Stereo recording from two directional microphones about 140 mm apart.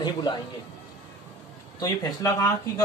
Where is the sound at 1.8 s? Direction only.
25° left (ahead or behind).